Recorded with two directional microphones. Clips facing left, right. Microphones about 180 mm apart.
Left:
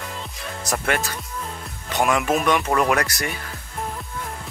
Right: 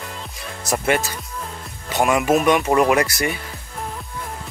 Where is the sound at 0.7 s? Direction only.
5° right (ahead or behind).